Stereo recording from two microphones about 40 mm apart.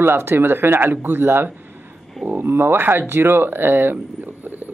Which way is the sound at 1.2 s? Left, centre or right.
Right.